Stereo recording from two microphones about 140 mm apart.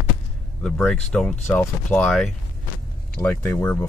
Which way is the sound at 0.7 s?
5° left (ahead or behind).